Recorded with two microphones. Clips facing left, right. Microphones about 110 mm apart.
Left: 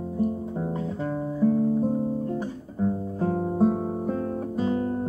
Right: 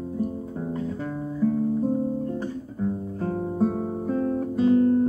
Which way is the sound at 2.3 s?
15° left (ahead or behind).